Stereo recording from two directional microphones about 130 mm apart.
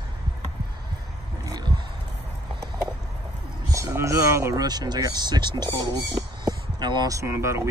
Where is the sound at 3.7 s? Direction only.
25° right (ahead or behind).